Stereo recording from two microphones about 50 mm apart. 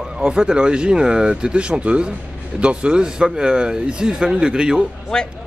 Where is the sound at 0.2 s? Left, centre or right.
Centre.